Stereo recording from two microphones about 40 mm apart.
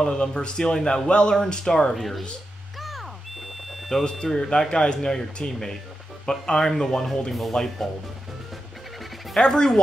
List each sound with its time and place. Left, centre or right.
0.0 s speech: centre
2.0 s speech: centre
2.8 s a sound: centre
3.9 s speech: centre
9.4 s speech: centre